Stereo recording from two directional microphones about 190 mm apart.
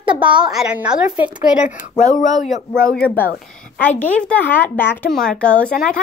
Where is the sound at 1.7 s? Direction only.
45° left (ahead or behind).